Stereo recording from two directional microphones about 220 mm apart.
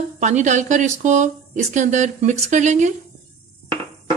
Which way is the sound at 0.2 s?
35° right (ahead or behind).